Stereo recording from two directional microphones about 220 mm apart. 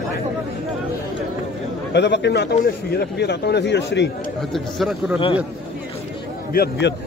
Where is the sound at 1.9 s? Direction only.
50° left (ahead or behind).